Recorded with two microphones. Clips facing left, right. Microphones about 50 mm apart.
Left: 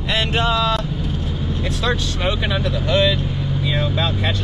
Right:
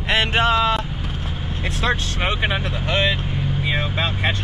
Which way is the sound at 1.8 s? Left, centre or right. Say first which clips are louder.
Even; right.